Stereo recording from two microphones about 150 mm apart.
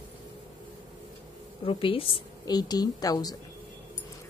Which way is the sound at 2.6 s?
25° left (ahead or behind).